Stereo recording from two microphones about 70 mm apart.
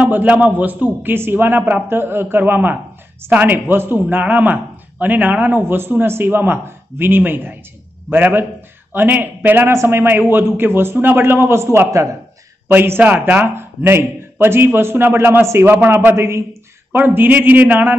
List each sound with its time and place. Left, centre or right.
0.0 s a man's voice: right
13.0 s a man's voice: right
15.4 s a man's voice: right
15.7 s speech: right
16.2 s a man's voice: right
16.9 s speech: right